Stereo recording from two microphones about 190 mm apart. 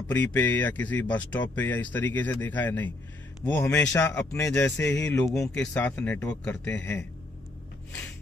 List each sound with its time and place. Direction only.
0.1 s speech: 10° left (ahead or behind)